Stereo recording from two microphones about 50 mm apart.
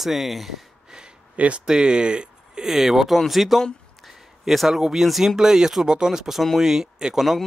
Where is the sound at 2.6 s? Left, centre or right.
Centre.